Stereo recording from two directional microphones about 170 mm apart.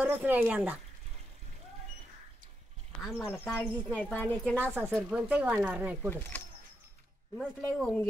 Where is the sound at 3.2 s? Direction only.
10° left (ahead or behind).